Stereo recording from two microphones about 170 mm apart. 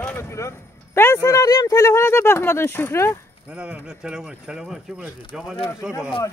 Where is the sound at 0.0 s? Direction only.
15° left (ahead or behind).